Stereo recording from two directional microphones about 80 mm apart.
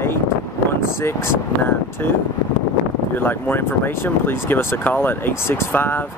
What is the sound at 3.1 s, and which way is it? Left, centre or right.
Speech, left.